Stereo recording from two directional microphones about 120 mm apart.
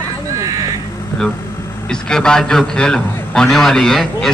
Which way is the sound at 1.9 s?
5° left (ahead or behind).